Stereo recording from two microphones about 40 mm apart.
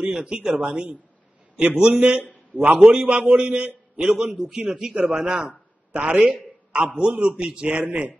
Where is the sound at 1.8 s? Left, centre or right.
Right.